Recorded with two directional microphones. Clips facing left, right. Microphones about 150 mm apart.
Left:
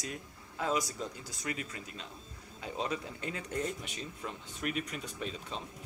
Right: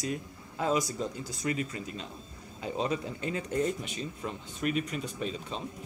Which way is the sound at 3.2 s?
5° right (ahead or behind).